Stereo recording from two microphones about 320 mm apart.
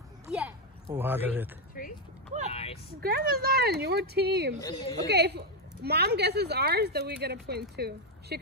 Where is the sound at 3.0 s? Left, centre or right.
Right.